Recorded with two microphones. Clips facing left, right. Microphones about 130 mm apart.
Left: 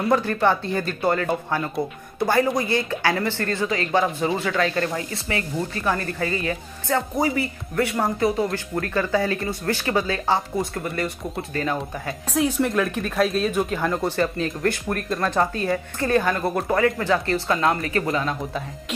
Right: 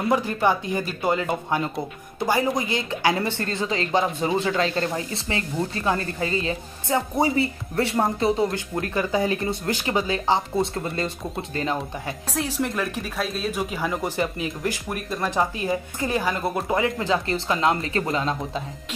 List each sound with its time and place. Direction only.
0.1 s speech: 15° right (ahead or behind)
12.4 s speech: centre (ahead or behind)
16.7 s speech: 20° right (ahead or behind)